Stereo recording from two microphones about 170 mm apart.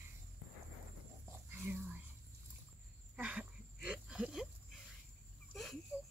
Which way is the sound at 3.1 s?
10° right (ahead or behind).